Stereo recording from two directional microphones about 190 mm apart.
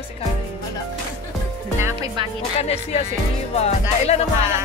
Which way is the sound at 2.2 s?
25° right (ahead or behind).